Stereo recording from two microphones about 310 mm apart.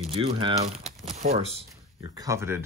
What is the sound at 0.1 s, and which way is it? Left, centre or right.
Speech, centre.